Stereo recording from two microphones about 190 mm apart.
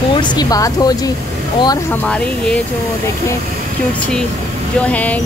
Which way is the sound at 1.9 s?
5° left (ahead or behind).